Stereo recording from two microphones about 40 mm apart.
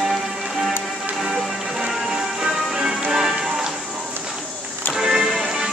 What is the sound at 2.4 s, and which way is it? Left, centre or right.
Music, centre.